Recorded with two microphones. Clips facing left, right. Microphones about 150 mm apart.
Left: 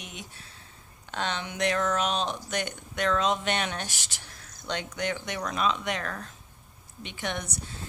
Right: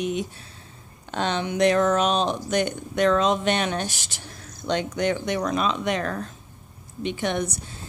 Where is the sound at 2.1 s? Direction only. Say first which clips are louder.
Right 6 dB; 65° right (ahead or behind).